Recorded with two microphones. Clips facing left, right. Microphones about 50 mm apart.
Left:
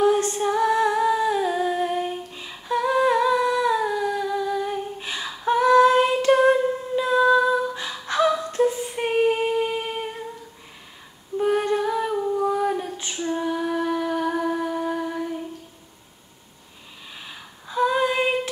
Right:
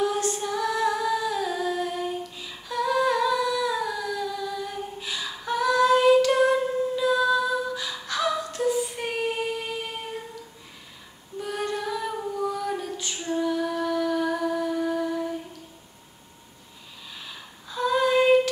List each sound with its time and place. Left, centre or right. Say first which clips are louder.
0.0 s humming: left 6 dB; left
11.3 s female singing: left 8 dB; left
17.2 s female singing: left 1 dB; left